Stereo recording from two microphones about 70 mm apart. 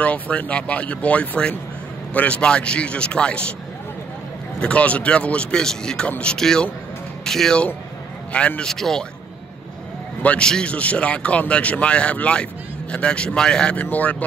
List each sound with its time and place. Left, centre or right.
0.0 s speech: left
4.6 s speech: centre
10.2 s speech: centre
13.8 s speech: left